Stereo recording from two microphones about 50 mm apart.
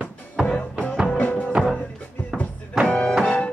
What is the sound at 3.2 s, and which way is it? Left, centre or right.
Music, left.